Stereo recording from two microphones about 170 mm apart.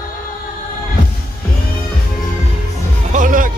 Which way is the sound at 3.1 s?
50° right (ahead or behind).